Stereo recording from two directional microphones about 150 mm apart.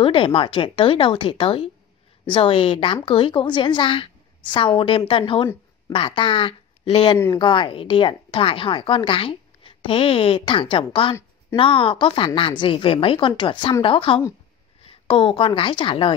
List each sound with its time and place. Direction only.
0.0 s a woman's voice: 35° left (ahead or behind)